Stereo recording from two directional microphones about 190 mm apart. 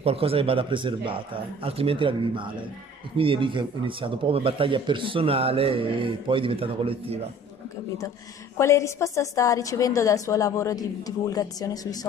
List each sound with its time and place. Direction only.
0.0 s speech: 30° right (ahead or behind)
8.5 s a woman's voice: 15° left (ahead or behind)